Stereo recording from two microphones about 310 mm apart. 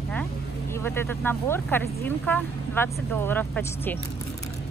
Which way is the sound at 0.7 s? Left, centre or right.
Centre.